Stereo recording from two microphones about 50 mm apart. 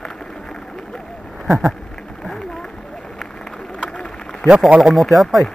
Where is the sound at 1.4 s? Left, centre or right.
Centre.